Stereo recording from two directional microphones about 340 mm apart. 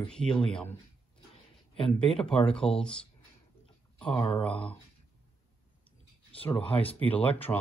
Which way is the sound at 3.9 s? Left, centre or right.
Centre.